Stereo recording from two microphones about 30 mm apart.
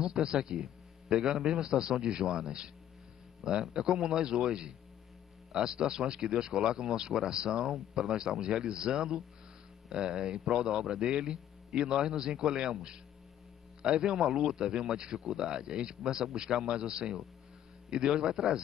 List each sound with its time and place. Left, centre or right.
0.0 s a man's voice: right
13.8 s speech: right